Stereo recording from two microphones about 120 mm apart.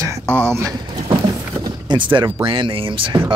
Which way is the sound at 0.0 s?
20° right (ahead or behind).